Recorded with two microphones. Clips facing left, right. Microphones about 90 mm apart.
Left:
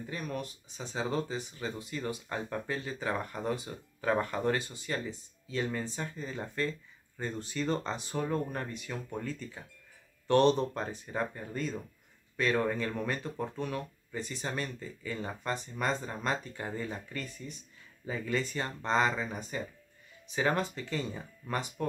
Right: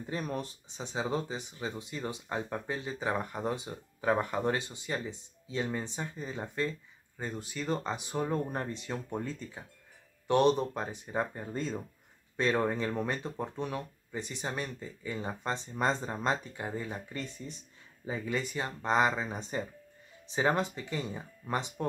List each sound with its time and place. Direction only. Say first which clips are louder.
0.0 s speech: right 2 dB; 30° right (ahead or behind); by 17.2 s 15° right (ahead or behind)
17.2 s speech: right 1 dB; 25° right (ahead or behind)